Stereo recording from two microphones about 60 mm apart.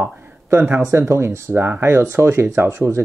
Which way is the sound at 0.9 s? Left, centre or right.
Right.